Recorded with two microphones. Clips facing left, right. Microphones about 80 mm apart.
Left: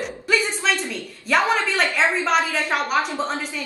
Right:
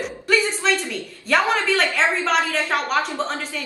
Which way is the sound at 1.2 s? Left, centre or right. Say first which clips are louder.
Even; centre.